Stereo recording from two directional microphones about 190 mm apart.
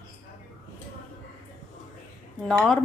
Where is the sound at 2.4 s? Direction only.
5° left (ahead or behind).